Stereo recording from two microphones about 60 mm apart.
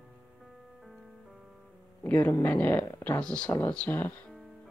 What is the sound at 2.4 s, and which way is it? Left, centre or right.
Speech, left.